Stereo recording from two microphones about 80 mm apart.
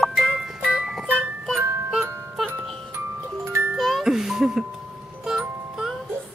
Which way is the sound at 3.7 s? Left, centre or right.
Centre.